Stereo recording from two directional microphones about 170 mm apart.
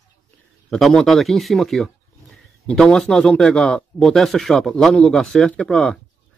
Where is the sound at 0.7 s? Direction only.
Centre (ahead or behind).